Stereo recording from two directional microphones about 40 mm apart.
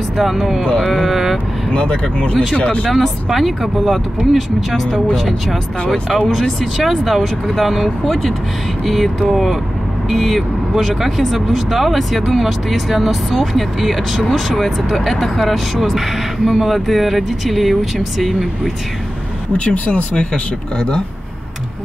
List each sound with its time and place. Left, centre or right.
0.2 s speech: centre
0.9 s vehicle: centre
1.7 s speech: left
2.9 s speech: centre
19.5 s speech: left